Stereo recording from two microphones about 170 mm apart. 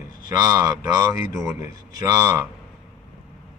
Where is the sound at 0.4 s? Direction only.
20° right (ahead or behind).